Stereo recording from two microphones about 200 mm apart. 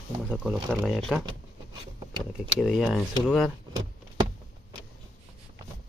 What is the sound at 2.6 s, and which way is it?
Speech, centre (ahead or behind).